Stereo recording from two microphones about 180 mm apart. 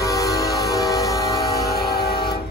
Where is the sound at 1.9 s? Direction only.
60° left (ahead or behind).